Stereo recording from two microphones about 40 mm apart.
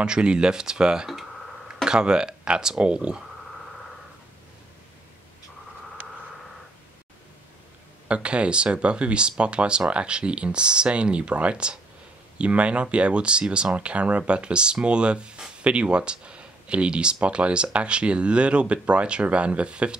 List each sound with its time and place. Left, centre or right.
0.0 s speech: right
8.1 s speech: right